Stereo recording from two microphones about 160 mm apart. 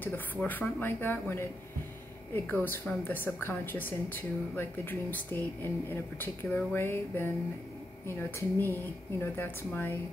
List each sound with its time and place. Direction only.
0.0 s speech: 10° left (ahead or behind)